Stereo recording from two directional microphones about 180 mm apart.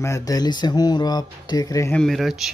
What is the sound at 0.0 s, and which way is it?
Speech, 20° left (ahead or behind).